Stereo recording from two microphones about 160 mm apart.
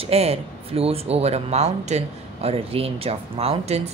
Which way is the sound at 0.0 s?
40° right (ahead or behind).